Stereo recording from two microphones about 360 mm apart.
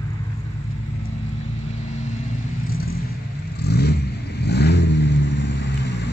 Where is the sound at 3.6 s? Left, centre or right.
Left.